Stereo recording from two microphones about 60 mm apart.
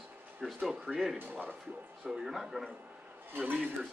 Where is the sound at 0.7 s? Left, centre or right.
Centre.